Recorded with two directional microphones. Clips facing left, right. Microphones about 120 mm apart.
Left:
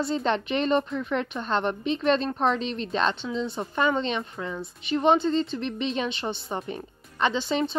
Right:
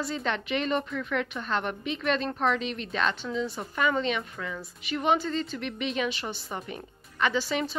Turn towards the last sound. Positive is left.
turn(degrees=25)  # may be behind; listen again after turning